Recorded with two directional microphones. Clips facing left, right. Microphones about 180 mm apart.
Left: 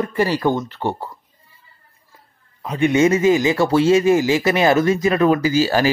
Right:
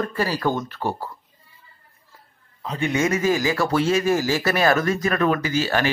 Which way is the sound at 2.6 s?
15° left (ahead or behind).